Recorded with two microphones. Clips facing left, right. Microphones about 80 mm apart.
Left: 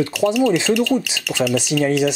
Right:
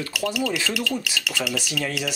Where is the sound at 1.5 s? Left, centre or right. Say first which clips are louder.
Left 10 dB; left.